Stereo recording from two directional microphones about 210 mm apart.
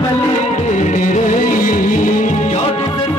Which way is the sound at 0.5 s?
35° left (ahead or behind).